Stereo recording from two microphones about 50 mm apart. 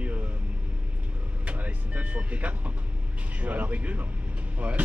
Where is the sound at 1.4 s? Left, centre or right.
Right.